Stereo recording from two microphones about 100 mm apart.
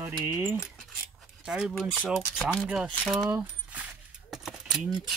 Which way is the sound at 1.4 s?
5° right (ahead or behind).